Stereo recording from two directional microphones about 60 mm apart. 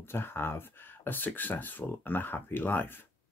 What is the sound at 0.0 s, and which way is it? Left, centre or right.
Speech, left.